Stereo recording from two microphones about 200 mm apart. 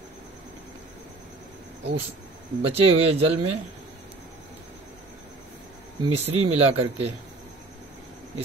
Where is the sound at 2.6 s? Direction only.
30° right (ahead or behind).